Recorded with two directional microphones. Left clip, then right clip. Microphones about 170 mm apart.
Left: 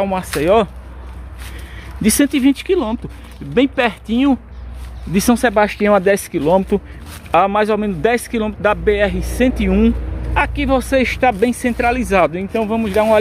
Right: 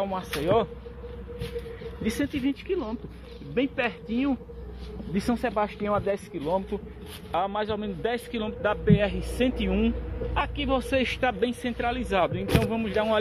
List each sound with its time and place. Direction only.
0.0 s speech: 25° left (ahead or behind)
2.0 s speech: 50° left (ahead or behind)
3.5 s speech: 30° left (ahead or behind)
7.2 s a man's voice: 30° left (ahead or behind)
12.4 s speech: centre (ahead or behind)